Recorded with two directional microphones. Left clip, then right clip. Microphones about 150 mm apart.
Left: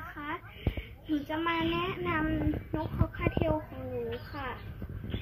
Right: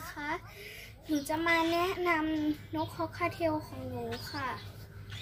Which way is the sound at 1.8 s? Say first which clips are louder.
Right 3 dB; 35° right (ahead or behind).